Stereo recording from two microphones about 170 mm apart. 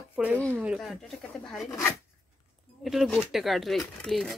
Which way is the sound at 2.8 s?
Centre (ahead or behind).